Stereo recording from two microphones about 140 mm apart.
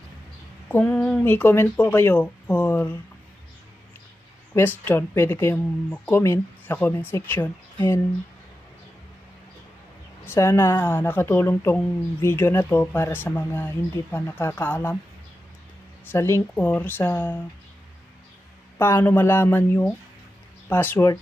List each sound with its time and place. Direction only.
0.7 s speech: 10° left (ahead or behind)
4.6 s speech: 15° left (ahead or behind)
10.2 s speech: 20° left (ahead or behind)
16.1 s a woman's voice: 20° left (ahead or behind)
18.8 s speech: 15° left (ahead or behind)